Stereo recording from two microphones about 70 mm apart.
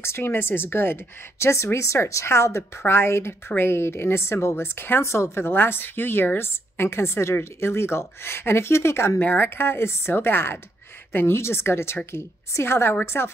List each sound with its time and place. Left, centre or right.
0.0 s a woman's voice: left